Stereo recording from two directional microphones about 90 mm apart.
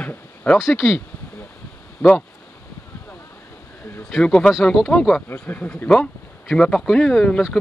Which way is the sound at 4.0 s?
5° left (ahead or behind).